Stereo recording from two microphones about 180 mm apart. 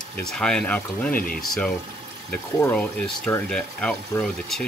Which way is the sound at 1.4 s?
5° left (ahead or behind).